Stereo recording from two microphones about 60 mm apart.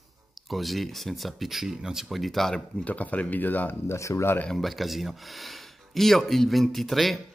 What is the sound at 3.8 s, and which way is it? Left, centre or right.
Speech, left.